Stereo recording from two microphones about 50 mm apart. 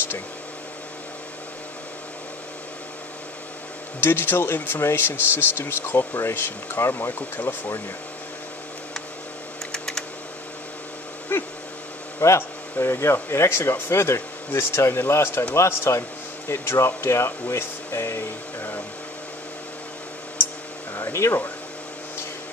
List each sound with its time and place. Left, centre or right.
4.0 s speech: left
9.7 s typing: centre
11.3 s a sound: left
12.2 s speech: left
15.5 s speech: left
16.4 s speech: left
20.9 s a sound: left